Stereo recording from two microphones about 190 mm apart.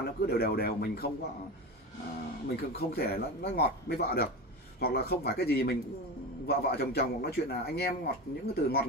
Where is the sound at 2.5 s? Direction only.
55° left (ahead or behind).